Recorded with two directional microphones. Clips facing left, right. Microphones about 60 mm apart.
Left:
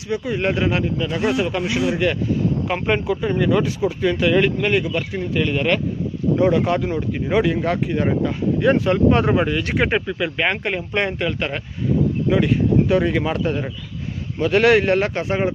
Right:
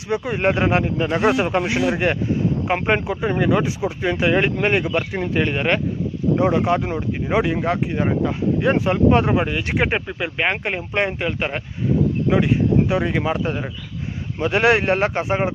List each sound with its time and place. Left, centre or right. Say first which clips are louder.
0.1 s speech: right 1 dB; right
6.3 s speech: left 1 dB; centre